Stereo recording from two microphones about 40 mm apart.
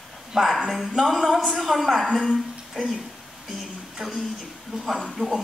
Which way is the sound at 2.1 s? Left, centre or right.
Left.